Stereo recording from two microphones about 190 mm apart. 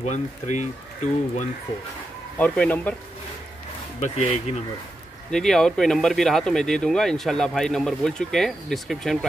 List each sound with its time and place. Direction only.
0.0 s speech: 40° left (ahead or behind)
2.3 s speech: 5° left (ahead or behind)
4.0 s speech: 35° left (ahead or behind)
5.3 s speech: 5° left (ahead or behind)